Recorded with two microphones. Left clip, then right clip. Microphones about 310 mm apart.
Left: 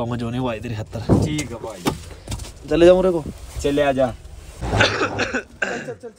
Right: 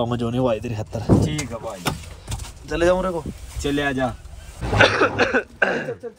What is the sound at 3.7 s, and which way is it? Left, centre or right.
Speech, centre.